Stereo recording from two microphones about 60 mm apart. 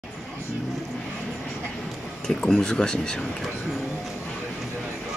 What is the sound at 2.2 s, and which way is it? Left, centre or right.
Speech, centre.